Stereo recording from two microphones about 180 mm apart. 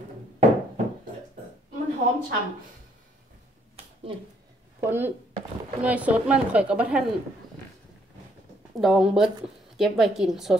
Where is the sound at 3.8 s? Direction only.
35° right (ahead or behind).